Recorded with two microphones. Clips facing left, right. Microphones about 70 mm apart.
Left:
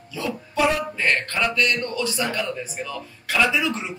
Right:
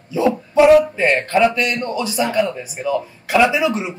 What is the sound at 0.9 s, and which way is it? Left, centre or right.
A man's voice, centre.